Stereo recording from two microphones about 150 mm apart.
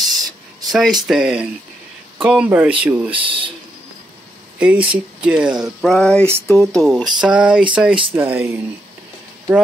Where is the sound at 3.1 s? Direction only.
35° right (ahead or behind).